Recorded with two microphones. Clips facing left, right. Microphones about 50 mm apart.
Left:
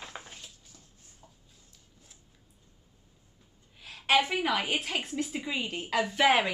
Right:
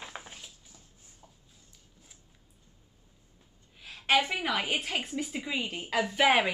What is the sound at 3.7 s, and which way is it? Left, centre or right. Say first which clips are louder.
A woman's voice: left 1 dB; centre.